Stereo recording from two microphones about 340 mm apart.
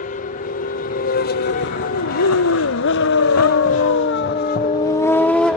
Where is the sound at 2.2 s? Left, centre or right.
Left.